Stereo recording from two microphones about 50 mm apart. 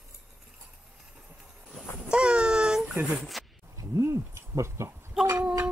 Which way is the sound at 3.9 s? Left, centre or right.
Right.